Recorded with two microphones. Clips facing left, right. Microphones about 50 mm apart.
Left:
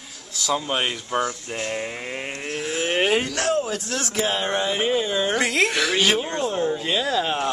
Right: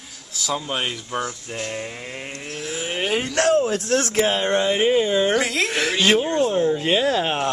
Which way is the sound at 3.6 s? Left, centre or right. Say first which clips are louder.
Right 5 dB; right.